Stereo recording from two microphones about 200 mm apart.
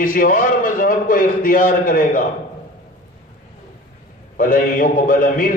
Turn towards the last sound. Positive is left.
turn(degrees=45)  # may be behind; listen again after turning